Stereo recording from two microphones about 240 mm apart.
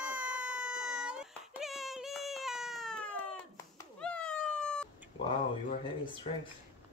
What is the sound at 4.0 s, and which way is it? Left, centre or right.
Cat, centre.